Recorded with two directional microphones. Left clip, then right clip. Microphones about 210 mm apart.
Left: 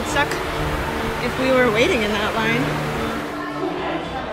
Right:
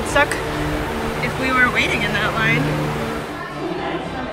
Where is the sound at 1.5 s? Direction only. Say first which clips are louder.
Even; 10° left (ahead or behind).